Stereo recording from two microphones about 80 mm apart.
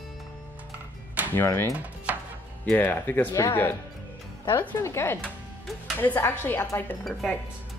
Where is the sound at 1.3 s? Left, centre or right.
Left.